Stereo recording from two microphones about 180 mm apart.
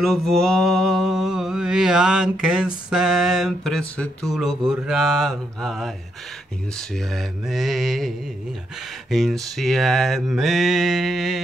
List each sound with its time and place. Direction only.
0.0 s mantra: centre (ahead or behind)
7.1 s mantra: centre (ahead or behind)
9.1 s mantra: centre (ahead or behind)